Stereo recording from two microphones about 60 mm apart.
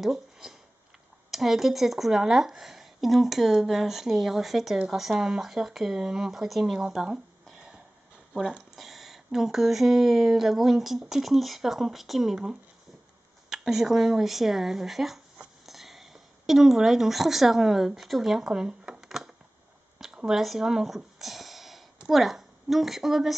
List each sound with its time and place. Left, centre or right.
0.0 s speech: centre
7.5 s a sound: centre
8.7 s a woman's voice: centre